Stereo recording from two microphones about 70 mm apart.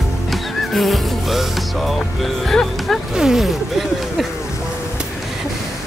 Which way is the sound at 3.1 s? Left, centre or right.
Centre.